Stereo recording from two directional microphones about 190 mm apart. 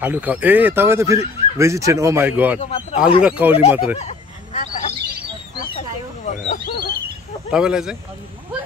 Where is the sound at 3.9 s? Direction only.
35° left (ahead or behind).